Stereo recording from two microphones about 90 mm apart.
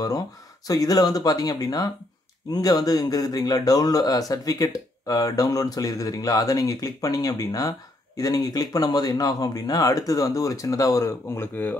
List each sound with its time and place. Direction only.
0.7 s speech: 45° left (ahead or behind); by 11.7 s 25° left (ahead or behind)